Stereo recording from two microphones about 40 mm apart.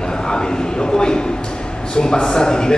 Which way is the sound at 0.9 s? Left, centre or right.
Centre.